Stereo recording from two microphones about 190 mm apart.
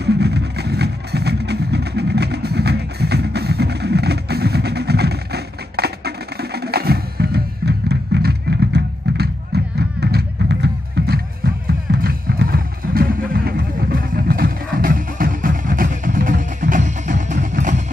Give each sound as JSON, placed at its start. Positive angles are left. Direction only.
{"t": 0.0, "sound": "music", "side_deg": -60}